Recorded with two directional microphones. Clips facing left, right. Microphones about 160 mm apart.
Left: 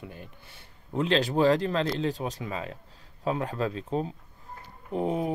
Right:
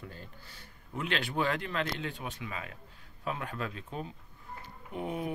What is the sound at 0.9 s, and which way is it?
Speech, 35° left (ahead or behind).